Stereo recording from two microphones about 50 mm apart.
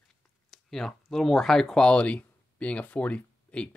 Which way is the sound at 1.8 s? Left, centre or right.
Left.